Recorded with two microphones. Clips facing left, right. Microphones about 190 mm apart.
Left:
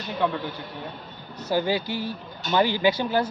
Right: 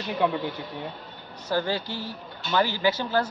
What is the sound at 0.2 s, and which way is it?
Speech, 15° right (ahead or behind).